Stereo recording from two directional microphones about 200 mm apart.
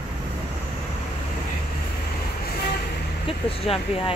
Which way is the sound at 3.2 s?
30° left (ahead or behind).